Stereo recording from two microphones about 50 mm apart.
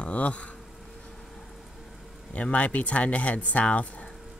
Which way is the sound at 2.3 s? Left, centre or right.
Left.